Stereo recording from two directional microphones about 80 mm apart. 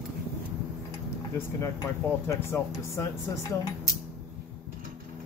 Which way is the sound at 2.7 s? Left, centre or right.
Left.